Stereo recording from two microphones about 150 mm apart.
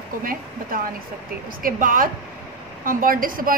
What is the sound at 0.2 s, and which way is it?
A woman's voice, 70° right (ahead or behind).